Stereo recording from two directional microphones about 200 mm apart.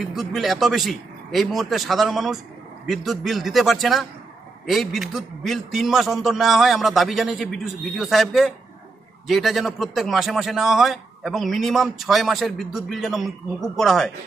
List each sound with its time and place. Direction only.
0.0 s a man's voice: centre (ahead or behind)